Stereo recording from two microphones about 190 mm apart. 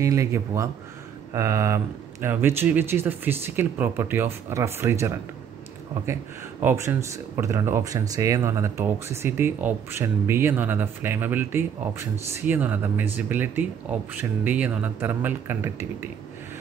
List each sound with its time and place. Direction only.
0.0 s speech: 15° right (ahead or behind)
6.6 s speech: 10° right (ahead or behind)